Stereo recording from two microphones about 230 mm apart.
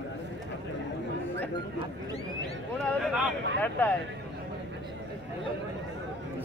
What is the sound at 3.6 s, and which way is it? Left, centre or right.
Speech, centre.